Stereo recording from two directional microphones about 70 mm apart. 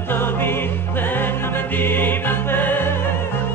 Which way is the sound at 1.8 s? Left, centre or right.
Left.